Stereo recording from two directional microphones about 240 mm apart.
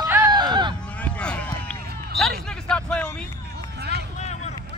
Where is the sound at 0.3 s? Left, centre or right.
Centre.